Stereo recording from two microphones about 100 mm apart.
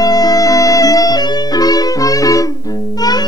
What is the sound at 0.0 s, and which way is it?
Music, 40° left (ahead or behind).